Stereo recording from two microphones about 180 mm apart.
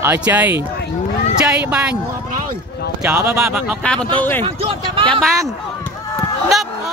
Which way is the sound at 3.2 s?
15° right (ahead or behind).